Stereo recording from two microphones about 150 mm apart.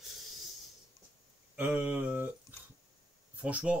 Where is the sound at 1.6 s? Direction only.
10° right (ahead or behind).